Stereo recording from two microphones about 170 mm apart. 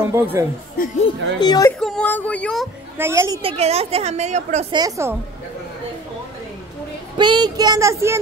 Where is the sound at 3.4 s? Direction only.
40° right (ahead or behind).